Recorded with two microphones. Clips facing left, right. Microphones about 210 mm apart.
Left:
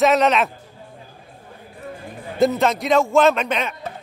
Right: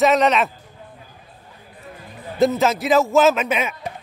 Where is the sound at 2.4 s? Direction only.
Centre (ahead or behind).